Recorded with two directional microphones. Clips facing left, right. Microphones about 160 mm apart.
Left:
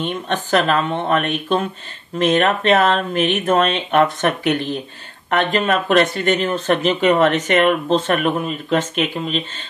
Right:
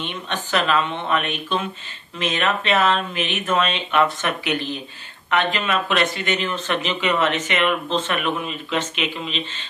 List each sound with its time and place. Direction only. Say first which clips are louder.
0.0 s speech: left 6 dB; 45° left (ahead or behind)